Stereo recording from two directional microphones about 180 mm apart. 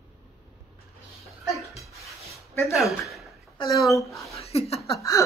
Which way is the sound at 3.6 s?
20° left (ahead or behind).